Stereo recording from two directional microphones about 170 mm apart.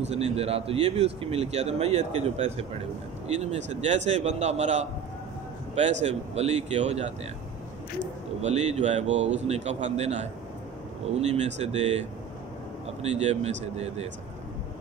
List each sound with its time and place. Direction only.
0.0 s speech: 40° right (ahead or behind)
8.4 s speech: 40° right (ahead or behind)